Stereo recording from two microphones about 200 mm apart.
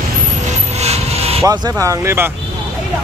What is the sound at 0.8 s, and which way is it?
Vehicle, 30° right (ahead or behind).